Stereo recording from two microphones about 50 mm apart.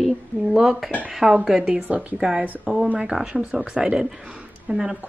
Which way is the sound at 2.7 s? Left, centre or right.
Right.